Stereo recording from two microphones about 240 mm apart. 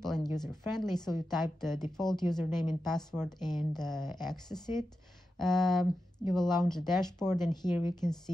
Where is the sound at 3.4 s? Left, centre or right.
Centre.